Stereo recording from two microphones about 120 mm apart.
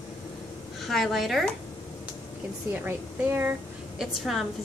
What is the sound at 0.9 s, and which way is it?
Speech, centre (ahead or behind).